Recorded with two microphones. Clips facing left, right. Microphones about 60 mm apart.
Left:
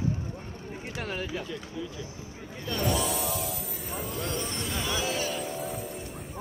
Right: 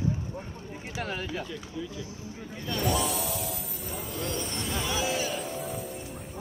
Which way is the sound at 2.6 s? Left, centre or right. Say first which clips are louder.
Even; centre.